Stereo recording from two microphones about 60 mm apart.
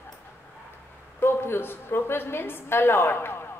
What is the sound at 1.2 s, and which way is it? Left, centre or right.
A woman's voice, left.